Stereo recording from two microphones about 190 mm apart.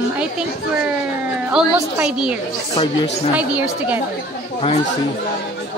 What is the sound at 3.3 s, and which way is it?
Speech, 5° right (ahead or behind).